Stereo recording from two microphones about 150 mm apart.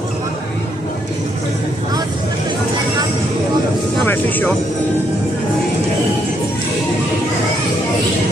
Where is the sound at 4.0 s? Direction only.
10° left (ahead or behind).